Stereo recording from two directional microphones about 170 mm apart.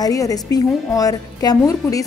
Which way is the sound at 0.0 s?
20° left (ahead or behind).